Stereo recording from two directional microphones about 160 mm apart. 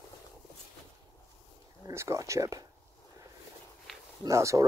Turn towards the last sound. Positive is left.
turn(degrees=-20)  # may be behind; listen again after turning